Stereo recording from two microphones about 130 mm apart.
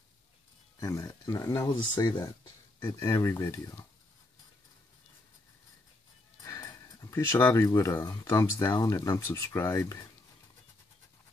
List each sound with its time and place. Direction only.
0.7 s speech: 25° left (ahead or behind)
6.4 s speech: 25° left (ahead or behind)